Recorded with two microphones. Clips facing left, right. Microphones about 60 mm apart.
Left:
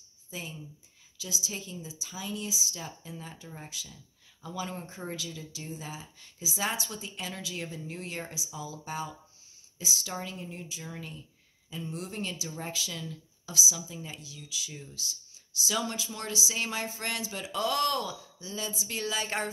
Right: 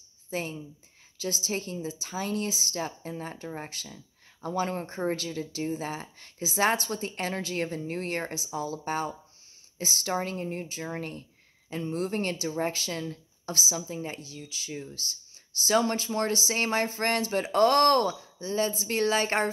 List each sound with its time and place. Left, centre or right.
0.3 s a woman's voice: right
15.0 s a woman's voice: right